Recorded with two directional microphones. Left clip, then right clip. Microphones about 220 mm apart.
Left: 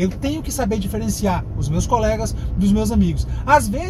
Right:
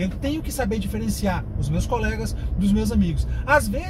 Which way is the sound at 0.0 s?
10° left (ahead or behind).